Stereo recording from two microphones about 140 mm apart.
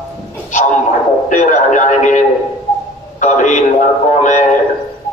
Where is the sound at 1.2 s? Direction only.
65° left (ahead or behind).